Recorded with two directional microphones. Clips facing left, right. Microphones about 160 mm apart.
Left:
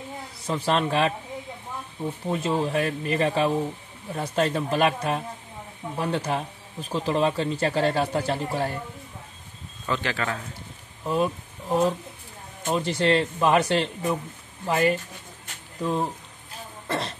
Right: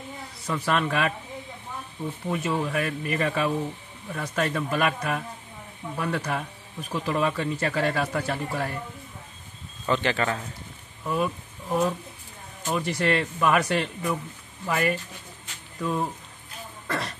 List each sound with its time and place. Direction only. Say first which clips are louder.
0.5 s speech: left 2 dB; 30° left (ahead or behind)
2.2 s speech: left 2 dB; 30° left (ahead or behind)
9.8 s speech: right 3 dB; centre (ahead or behind)
11.1 s speech: left 2 dB; 25° left (ahead or behind)